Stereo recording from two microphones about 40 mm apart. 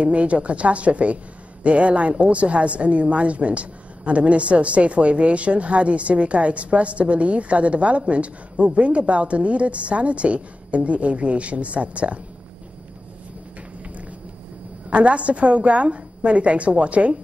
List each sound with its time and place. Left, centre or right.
0.0 s a woman's voice: right
14.9 s a woman's voice: right